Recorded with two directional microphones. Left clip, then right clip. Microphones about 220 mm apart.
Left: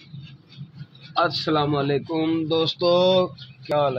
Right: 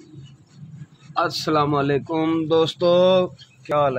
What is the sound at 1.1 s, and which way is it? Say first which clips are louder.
Speech: right 1 dB; 5° right (ahead or behind).